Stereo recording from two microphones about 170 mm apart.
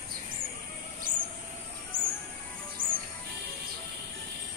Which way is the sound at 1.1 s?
50° right (ahead or behind).